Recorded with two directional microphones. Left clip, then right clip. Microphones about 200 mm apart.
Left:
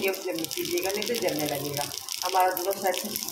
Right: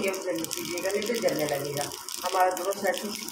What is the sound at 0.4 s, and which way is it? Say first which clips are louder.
Speech: left 2 dB; 5° right (ahead or behind).